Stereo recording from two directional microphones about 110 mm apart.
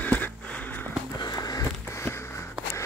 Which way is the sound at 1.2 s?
35° left (ahead or behind).